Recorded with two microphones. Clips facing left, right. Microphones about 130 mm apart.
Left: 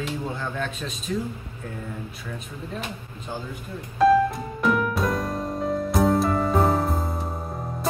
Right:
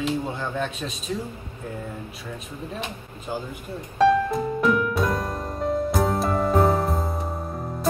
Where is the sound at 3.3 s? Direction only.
10° right (ahead or behind).